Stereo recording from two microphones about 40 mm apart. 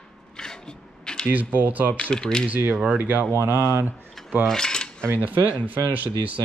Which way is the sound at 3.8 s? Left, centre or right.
Right.